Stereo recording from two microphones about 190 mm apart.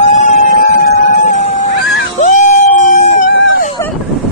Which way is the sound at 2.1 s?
45° left (ahead or behind).